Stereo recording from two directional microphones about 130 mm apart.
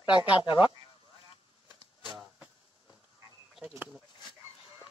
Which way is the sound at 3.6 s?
10° right (ahead or behind).